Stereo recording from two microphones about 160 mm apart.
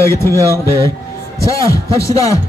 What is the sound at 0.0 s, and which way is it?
A man's voice, 15° left (ahead or behind).